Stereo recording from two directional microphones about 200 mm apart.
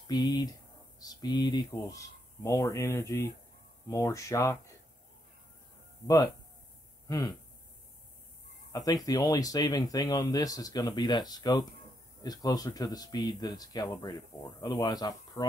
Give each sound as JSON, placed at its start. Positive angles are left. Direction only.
{"t": 0.0, "sound": "speech", "side_deg": 20}
{"t": 6.0, "sound": "speech", "side_deg": 20}
{"t": 7.1, "sound": "a sound", "side_deg": 15}
{"t": 8.7, "sound": "speech", "side_deg": 20}